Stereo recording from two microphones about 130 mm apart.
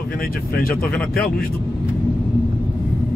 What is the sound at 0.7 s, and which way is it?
Speech, 10° left (ahead or behind).